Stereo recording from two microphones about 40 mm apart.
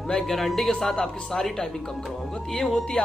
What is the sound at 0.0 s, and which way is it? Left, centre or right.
Speech, centre.